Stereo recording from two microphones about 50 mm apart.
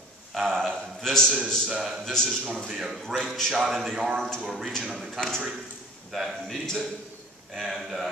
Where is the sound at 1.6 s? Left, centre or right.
Centre.